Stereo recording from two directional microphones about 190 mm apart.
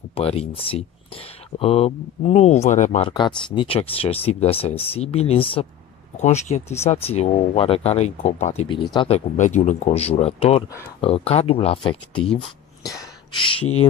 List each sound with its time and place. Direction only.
0.1 s speech: 30° left (ahead or behind)
3.1 s speech: 25° left (ahead or behind)
12.9 s a sound: 20° left (ahead or behind)